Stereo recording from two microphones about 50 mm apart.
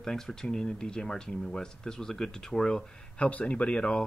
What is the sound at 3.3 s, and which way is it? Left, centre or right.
Speech, left.